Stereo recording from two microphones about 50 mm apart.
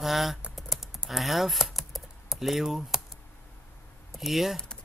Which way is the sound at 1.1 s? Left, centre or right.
Centre.